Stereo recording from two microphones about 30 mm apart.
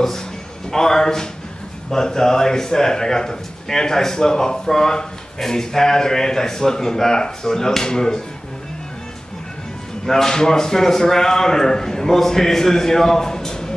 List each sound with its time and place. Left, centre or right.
0.7 s speech: centre
10.0 s speech: centre